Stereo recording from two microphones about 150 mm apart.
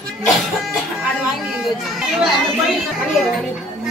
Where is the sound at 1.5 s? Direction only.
Centre (ahead or behind).